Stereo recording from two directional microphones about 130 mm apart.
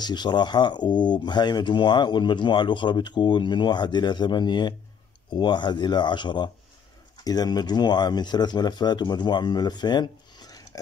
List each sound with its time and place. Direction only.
0.0 s speech: 35° left (ahead or behind)